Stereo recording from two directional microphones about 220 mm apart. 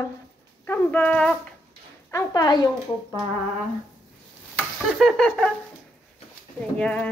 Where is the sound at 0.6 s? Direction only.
10° left (ahead or behind).